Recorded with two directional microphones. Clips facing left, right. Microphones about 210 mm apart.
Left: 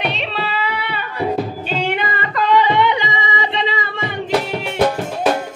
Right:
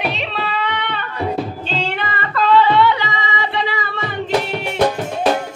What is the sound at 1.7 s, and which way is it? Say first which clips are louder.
Singing: left 2 dB; 10° left (ahead or behind).